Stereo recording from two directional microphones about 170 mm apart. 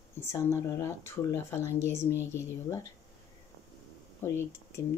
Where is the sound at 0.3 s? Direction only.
15° left (ahead or behind).